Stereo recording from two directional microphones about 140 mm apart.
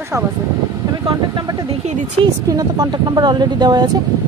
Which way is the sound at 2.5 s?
25° right (ahead or behind).